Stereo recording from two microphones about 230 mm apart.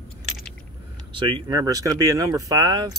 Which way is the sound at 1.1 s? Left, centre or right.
Right.